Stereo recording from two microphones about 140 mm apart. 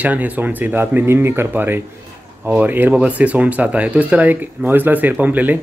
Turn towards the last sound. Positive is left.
turn(degrees=-10)  # may be behind; listen again after turning